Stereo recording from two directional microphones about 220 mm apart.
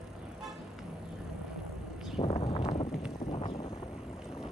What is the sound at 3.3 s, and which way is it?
Vehicle, 25° left (ahead or behind).